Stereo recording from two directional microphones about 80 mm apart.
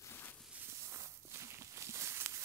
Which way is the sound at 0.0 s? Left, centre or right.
Left.